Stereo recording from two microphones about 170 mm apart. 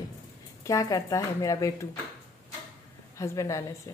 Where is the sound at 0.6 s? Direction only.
20° left (ahead or behind).